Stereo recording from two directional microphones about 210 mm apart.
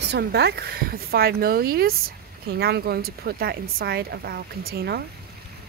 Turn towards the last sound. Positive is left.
turn(degrees=-50)  # may be behind; listen again after turning